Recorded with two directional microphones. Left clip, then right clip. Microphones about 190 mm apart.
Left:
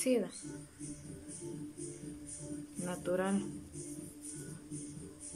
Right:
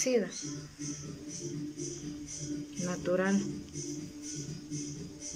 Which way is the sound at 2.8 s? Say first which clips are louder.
Right 4 dB; 5° left (ahead or behind).